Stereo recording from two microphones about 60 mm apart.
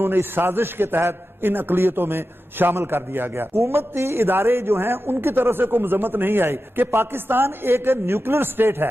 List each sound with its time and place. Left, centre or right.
0.0 s a man's voice: right